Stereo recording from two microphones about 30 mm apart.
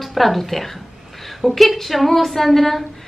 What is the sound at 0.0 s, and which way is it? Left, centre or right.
A woman's voice, centre.